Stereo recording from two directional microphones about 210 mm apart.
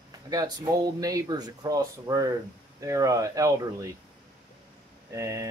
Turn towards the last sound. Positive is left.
turn(degrees=-15)  # may be behind; listen again after turning